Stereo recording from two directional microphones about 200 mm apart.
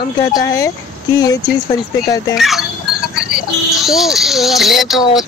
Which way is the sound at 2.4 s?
Centre (ahead or behind).